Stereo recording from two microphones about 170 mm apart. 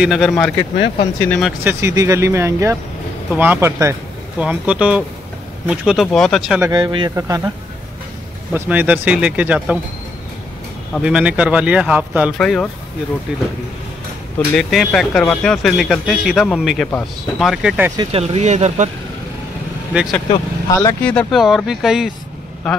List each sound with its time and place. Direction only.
0.0 s speech: centre (ahead or behind)
1.4 s speech: 10° right (ahead or behind)
6.6 s speech: 25° right (ahead or behind)
8.5 s speech: 10° right (ahead or behind)
11.0 s speech: 5° right (ahead or behind)
12.4 s speech: 5° left (ahead or behind)
14.5 s speech: centre (ahead or behind)
18.1 s speech: 35° right (ahead or behind)
19.9 s speech: 5° right (ahead or behind)
20.2 s speech: 20° left (ahead or behind)
21.0 s speech: 5° left (ahead or behind)